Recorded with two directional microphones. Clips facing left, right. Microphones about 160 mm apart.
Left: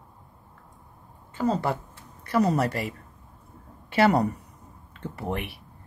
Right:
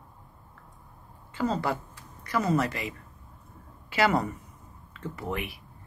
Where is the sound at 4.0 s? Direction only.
40° left (ahead or behind).